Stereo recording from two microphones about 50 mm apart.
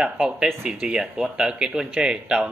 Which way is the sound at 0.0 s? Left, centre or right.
Centre.